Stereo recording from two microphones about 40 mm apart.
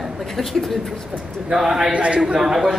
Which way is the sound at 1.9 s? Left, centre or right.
Right.